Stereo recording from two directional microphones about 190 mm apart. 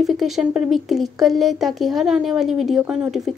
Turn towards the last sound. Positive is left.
turn(degrees=-5)  # may be behind; listen again after turning